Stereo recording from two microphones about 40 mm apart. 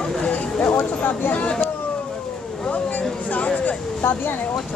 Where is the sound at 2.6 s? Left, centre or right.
Left.